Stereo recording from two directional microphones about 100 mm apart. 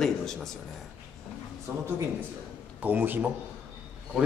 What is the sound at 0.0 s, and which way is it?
Speech, 5° left (ahead or behind).